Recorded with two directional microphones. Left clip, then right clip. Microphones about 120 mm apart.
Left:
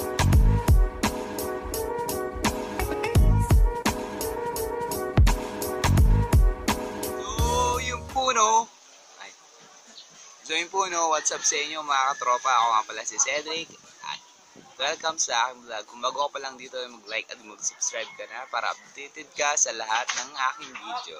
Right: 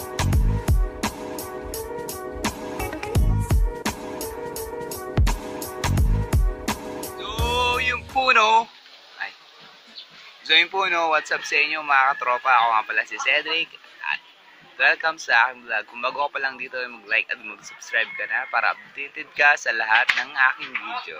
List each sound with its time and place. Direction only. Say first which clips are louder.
0.0 s music: left 1 dB; centre (ahead or behind)
8.2 s a sound: right 4 dB; 20° left (ahead or behind)
10.4 s speech: right 8 dB; 15° left (ahead or behind)